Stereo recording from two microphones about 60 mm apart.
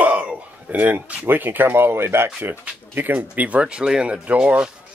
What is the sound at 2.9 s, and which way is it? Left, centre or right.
Speech, right.